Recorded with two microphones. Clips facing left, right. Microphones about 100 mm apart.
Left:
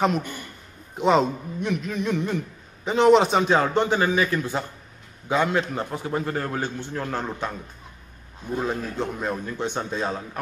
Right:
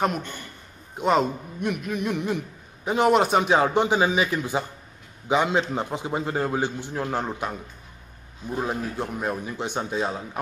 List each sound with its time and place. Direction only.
0.9 s a man's voice: centre (ahead or behind)
8.5 s a man's voice: 10° right (ahead or behind)